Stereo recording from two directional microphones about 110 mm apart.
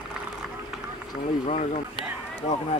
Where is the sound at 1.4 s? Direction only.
90° left.